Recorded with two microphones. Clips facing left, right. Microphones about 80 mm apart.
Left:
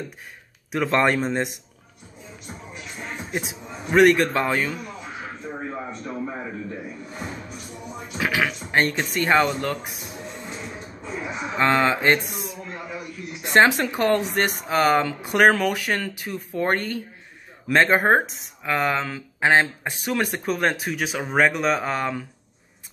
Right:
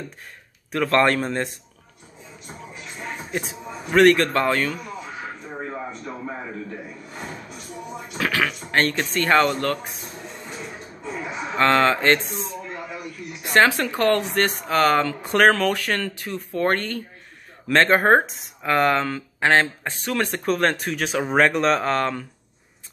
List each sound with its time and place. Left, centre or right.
0.7 s speech: centre
3.3 s a man's voice: centre
8.2 s speech: centre
11.5 s speech: centre
13.4 s speech: left